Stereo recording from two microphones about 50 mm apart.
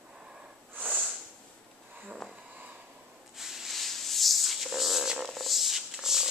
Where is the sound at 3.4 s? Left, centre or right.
Centre.